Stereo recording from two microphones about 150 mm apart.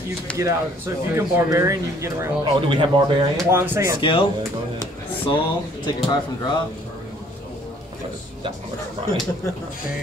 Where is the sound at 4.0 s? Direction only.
35° left (ahead or behind).